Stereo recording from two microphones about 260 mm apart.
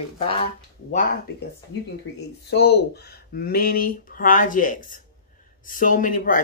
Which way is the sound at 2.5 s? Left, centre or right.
Left.